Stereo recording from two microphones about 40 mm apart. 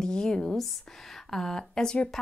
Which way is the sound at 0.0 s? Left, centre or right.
Centre.